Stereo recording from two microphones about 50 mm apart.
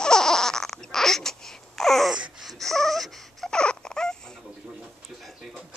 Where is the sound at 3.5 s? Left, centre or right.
Centre.